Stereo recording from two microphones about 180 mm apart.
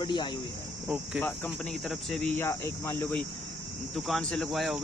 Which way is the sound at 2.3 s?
15° left (ahead or behind).